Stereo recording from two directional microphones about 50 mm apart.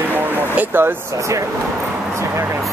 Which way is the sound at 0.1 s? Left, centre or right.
Right.